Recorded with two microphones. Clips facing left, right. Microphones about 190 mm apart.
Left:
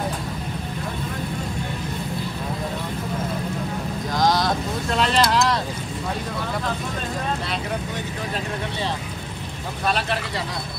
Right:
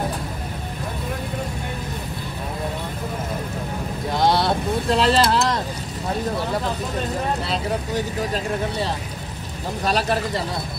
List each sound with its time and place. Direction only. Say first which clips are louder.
4.1 s vehicle: right 2 dB; 30° right (ahead or behind)
9.8 s speech: right 3 dB; 40° right (ahead or behind)